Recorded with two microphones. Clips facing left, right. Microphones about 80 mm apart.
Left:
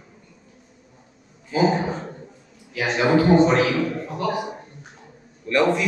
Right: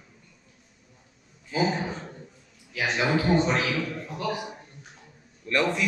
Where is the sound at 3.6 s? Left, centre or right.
Left.